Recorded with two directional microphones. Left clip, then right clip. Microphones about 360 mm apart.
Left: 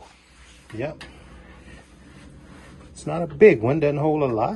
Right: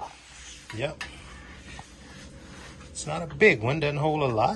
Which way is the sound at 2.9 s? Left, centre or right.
Centre.